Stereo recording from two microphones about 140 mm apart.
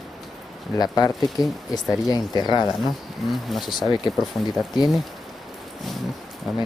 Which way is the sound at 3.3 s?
Centre (ahead or behind).